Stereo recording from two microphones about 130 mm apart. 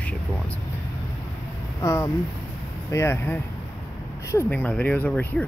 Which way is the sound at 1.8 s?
20° left (ahead or behind).